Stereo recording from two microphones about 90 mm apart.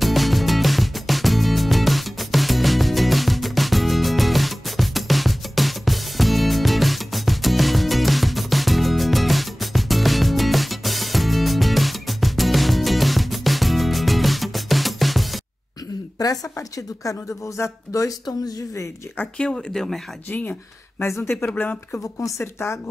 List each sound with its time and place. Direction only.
0.0 s music: centre (ahead or behind)
16.2 s a woman's voice: 40° left (ahead or behind)
19.1 s speech: 10° left (ahead or behind)
20.2 s speech: 20° left (ahead or behind)
22.2 s speech: 30° left (ahead or behind)